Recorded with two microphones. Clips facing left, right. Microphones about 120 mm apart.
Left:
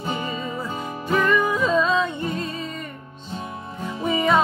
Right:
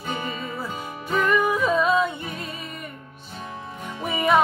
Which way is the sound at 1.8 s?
10° right (ahead or behind).